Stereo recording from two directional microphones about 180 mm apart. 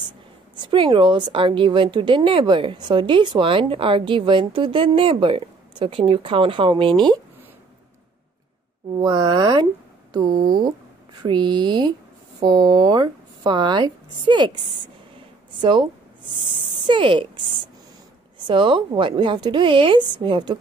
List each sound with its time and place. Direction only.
0.6 s a woman's voice: 25° right (ahead or behind)
9.0 s a woman's voice: 25° right (ahead or behind)
15.6 s a woman's voice: 25° right (ahead or behind)
18.5 s a woman's voice: 30° right (ahead or behind)